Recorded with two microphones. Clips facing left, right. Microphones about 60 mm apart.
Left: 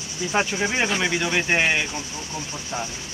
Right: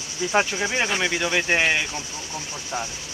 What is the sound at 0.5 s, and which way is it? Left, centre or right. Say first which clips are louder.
Speech: left 1 dB; left.